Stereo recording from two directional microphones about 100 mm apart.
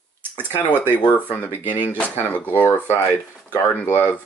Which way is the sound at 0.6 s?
15° left (ahead or behind).